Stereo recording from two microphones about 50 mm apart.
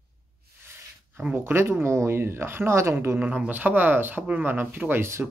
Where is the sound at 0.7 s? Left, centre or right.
Right.